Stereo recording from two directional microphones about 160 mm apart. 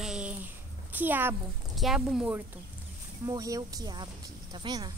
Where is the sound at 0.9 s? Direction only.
10° right (ahead or behind).